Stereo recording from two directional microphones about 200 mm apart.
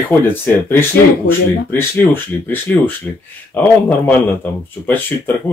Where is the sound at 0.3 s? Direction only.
10° left (ahead or behind).